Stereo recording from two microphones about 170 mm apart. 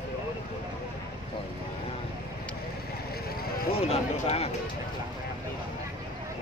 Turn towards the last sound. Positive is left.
turn(degrees=35)  # may be behind; listen again after turning